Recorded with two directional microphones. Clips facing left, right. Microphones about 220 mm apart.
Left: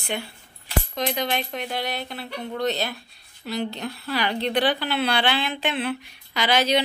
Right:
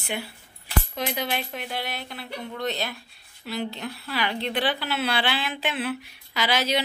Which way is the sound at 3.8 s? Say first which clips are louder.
Left 3 dB; 40° left (ahead or behind).